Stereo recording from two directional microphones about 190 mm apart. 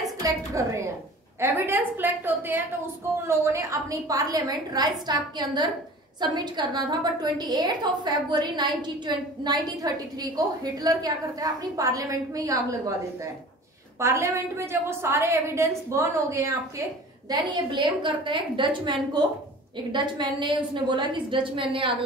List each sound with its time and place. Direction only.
0.2 s a woman's voice: 15° right (ahead or behind)
13.9 s a woman's voice: 15° right (ahead or behind)